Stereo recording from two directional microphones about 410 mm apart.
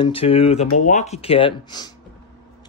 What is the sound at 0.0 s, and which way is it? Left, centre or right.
Speech, centre.